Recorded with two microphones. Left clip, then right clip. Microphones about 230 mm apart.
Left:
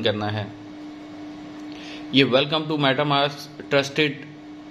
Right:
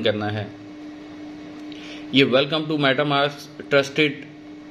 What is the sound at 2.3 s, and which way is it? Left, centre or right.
Speech, centre.